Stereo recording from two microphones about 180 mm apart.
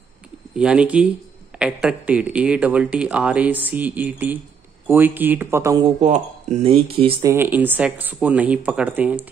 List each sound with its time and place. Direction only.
0.6 s speech: 5° right (ahead or behind)
5.9 s speech: 40° right (ahead or behind)
7.2 s speech: 15° right (ahead or behind)